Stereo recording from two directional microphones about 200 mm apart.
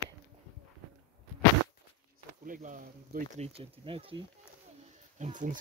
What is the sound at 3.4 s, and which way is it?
Speech, 30° right (ahead or behind).